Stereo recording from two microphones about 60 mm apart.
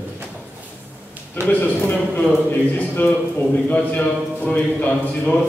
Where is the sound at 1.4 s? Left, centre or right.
Left.